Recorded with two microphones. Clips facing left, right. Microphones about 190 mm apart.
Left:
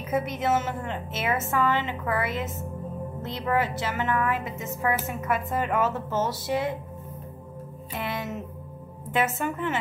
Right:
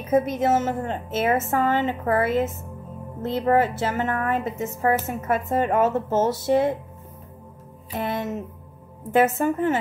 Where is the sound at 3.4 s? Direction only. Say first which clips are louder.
Right 5 dB; 40° right (ahead or behind); by 6.8 s 25° right (ahead or behind).